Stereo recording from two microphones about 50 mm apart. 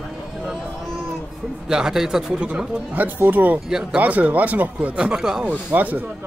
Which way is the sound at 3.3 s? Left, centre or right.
Right.